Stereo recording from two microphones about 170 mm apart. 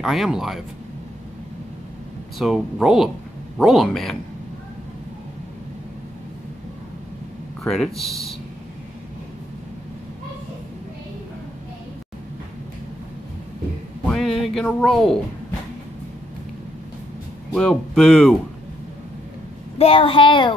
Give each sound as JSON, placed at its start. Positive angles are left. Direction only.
{"t": 0.0, "sound": "speech", "side_deg": 0}
{"t": 2.3, "sound": "speech", "side_deg": -5}
{"t": 7.6, "sound": "speech", "side_deg": 0}
{"t": 14.0, "sound": "a sound", "side_deg": 0}
{"t": 17.5, "sound": "speech", "side_deg": 5}
{"t": 19.8, "sound": "a child's voice", "side_deg": 35}